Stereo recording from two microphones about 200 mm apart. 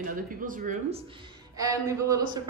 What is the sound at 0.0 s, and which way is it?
Speech, 45° right (ahead or behind).